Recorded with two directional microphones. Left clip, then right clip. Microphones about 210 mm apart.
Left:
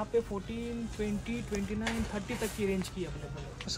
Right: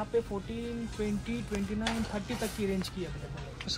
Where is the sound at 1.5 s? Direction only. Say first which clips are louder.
Right 1 dB; 10° right (ahead or behind).